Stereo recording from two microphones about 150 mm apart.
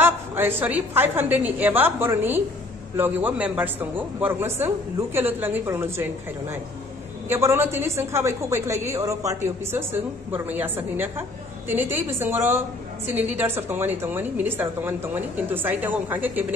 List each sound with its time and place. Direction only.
0.0 s a woman's voice: 15° right (ahead or behind)
7.2 s a woman's voice: 15° right (ahead or behind)